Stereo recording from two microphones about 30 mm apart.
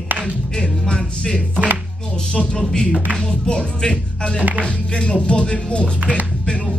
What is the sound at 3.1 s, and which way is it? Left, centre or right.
Speech, left.